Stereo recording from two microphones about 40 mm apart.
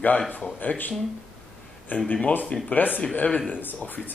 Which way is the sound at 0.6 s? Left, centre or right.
Left.